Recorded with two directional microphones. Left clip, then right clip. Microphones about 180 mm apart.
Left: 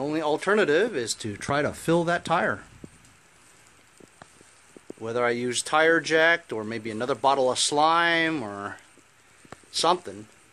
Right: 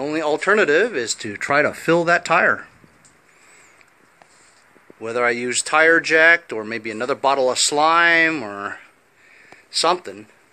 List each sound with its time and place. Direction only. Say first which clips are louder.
0.0 s speech: right 5 dB; 10° left (ahead or behind)
5.0 s speech: right 5 dB; 15° left (ahead or behind)
9.8 s speech: right 4 dB; 15° left (ahead or behind)